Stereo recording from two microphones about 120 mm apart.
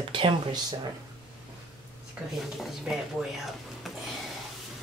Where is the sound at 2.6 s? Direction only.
5° right (ahead or behind).